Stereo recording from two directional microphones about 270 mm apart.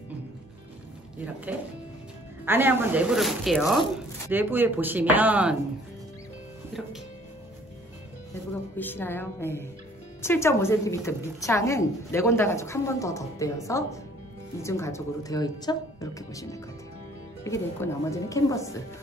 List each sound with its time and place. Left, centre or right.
1.2 s speech: centre
8.7 s a woman's voice: centre